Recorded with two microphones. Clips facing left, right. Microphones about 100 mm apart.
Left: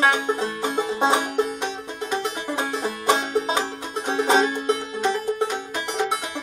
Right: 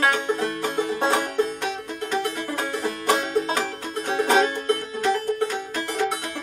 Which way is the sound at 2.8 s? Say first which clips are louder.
Even; 20° left (ahead or behind).